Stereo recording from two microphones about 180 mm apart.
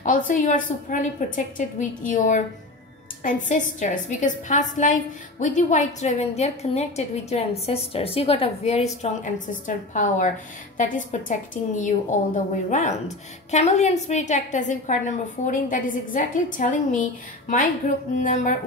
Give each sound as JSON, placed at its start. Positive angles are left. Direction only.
{"t": 0.0, "sound": "a woman's voice", "side_deg": 45}
{"t": 9.0, "sound": "a woman's voice", "side_deg": 45}